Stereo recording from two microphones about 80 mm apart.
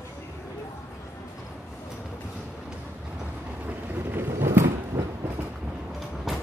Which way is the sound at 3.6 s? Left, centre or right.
Right.